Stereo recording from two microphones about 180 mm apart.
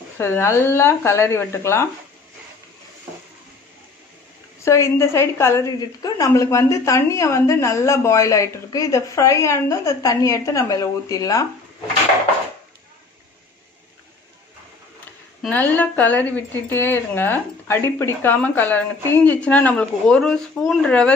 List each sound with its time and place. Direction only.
0.2 s a woman's voice: 15° left (ahead or behind)
4.6 s a woman's voice: 15° left (ahead or behind)
15.4 s a woman's voice: 10° left (ahead or behind)